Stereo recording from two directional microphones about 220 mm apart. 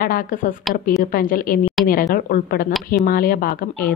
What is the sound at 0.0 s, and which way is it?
A woman's voice, 40° left (ahead or behind).